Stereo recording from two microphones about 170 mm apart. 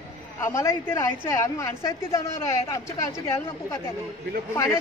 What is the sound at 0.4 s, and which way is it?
A woman's voice, 15° left (ahead or behind).